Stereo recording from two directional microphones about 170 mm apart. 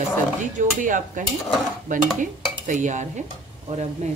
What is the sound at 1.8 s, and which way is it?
Stir, 50° right (ahead or behind).